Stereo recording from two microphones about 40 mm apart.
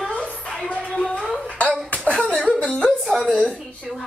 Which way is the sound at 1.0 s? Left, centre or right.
Centre.